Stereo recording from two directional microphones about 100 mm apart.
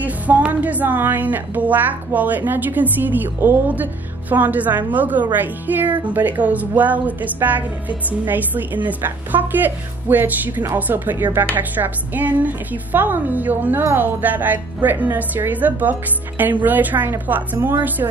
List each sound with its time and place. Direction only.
0.0 s speech: 15° right (ahead or behind)